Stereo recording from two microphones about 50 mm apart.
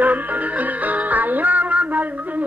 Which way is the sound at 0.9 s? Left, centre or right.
Right.